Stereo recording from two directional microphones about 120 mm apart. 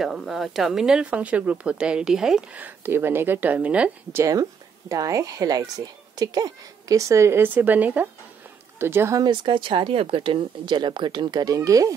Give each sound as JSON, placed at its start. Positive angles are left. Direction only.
{"t": 0.0, "sound": "speech", "side_deg": 0}
{"t": 4.2, "sound": "a woman's voice", "side_deg": -25}
{"t": 9.2, "sound": "speech", "side_deg": -45}